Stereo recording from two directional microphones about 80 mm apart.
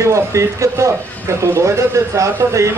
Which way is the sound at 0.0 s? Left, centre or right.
Right.